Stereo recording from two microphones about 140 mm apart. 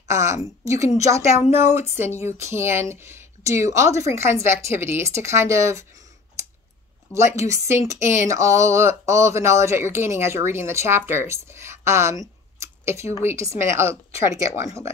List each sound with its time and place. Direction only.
0.1 s speech: 20° right (ahead or behind)
1.5 s speech: 55° left (ahead or behind)
2.0 s speech: 20° right (ahead or behind)
7.2 s speech: 20° right (ahead or behind)